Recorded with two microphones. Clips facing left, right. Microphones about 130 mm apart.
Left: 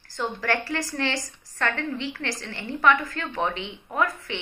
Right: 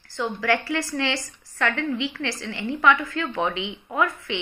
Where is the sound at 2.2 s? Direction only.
40° left (ahead or behind).